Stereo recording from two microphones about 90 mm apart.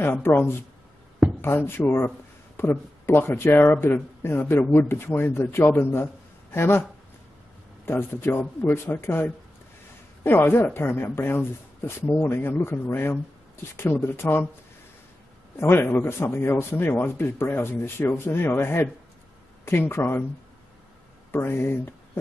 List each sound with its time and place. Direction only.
0.0 s speech: 25° left (ahead or behind)
7.8 s speech: 25° left (ahead or behind)
15.5 s speech: 30° left (ahead or behind)
21.3 s speech: 25° left (ahead or behind)